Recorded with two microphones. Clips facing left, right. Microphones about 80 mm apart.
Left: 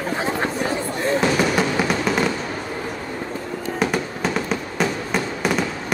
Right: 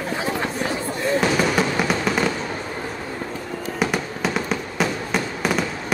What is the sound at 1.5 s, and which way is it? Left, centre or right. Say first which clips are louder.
Music: left 1 dB; centre.